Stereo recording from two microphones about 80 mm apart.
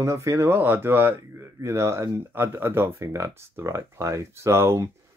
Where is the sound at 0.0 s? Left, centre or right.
Right.